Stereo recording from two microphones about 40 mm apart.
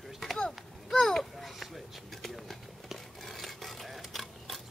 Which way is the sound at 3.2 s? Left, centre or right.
Centre.